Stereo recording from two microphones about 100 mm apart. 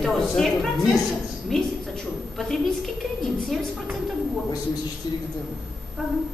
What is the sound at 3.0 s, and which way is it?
Music, centre (ahead or behind).